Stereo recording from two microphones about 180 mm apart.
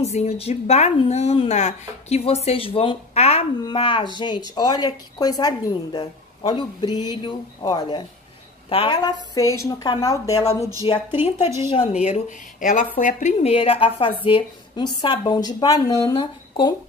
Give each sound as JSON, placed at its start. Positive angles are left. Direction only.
{"t": 0.0, "sound": "a woman's voice", "side_deg": 35}
{"t": 11.4, "sound": "a woman's voice", "side_deg": -15}
{"t": 11.7, "sound": "speech", "side_deg": 35}